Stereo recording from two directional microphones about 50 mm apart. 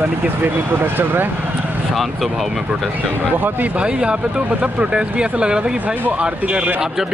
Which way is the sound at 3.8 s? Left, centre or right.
Right.